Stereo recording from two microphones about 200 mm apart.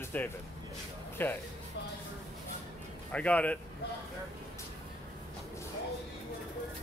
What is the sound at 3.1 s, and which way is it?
Speech, 5° left (ahead or behind).